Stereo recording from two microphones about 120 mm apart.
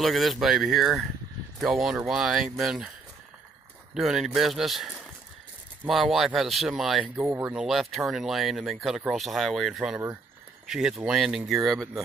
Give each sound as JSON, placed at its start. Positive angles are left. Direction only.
{"t": 0.0, "sound": "speech", "side_deg": 0}
{"t": 3.9, "sound": "speech", "side_deg": -5}
{"t": 7.2, "sound": "speech", "side_deg": -20}
{"t": 7.5, "sound": "speech", "side_deg": 0}